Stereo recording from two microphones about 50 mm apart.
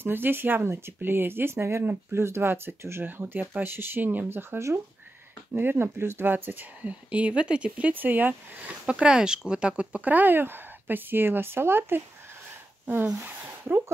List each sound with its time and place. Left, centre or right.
0.0 s speech: right
0.7 s speech: right
3.1 s speech: right
4.3 s speech: right
7.9 s speech: right
8.8 s speech: centre
10.0 s speech: right
13.2 s speech: right